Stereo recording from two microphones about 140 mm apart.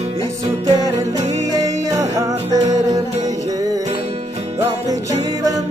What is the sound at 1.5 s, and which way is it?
Music, 25° right (ahead or behind).